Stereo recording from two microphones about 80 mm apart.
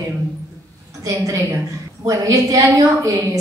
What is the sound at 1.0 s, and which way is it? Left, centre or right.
A woman's voice, right.